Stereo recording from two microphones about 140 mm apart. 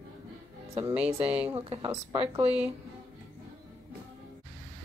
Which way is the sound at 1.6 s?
40° right (ahead or behind).